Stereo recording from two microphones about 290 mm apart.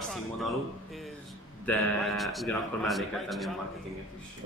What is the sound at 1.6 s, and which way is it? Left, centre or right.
A man's voice, centre.